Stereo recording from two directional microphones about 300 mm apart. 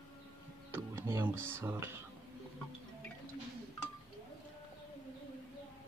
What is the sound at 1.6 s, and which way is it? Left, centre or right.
Speech, centre.